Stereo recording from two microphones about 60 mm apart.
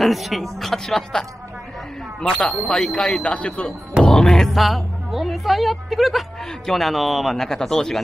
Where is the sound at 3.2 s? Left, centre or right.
Centre.